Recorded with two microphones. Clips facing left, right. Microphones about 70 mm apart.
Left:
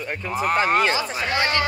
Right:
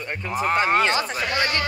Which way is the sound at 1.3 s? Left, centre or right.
Left.